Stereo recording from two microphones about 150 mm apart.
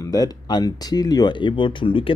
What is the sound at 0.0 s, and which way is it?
Speech, 25° left (ahead or behind).